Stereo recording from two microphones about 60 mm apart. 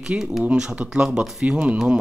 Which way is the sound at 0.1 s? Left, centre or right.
Right.